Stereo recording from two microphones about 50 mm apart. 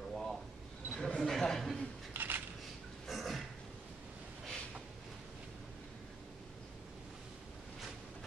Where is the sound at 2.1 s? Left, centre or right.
Right.